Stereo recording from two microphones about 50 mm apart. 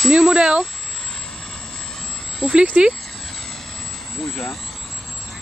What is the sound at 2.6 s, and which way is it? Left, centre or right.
Speech, right.